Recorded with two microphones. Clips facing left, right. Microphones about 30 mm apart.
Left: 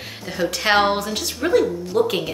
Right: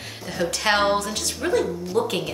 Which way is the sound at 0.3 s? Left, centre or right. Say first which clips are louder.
Left 3 dB; centre.